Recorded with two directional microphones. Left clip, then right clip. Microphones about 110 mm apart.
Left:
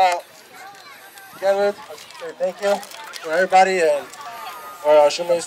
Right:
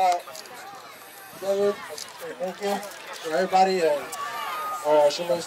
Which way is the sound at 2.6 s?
20° left (ahead or behind).